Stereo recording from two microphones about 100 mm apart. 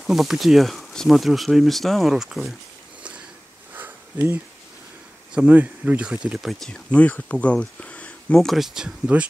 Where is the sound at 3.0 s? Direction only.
10° right (ahead or behind).